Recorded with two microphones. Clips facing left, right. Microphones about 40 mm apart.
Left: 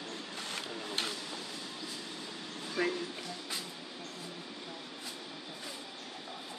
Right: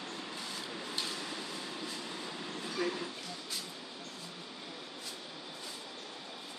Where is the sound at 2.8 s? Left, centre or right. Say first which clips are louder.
Left 3 dB; left.